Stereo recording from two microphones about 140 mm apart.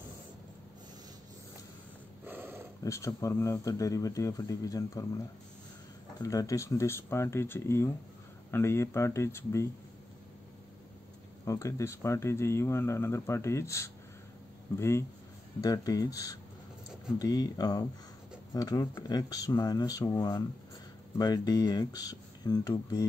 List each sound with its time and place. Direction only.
2.2 s dog: 15° right (ahead or behind)
2.8 s speech: 20° left (ahead or behind)
6.2 s speech: 25° left (ahead or behind)
11.4 s speech: 20° left (ahead or behind)